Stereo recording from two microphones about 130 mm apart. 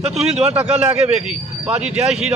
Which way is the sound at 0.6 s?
10° right (ahead or behind).